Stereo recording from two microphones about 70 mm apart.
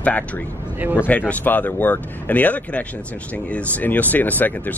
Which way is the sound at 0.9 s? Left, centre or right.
Left.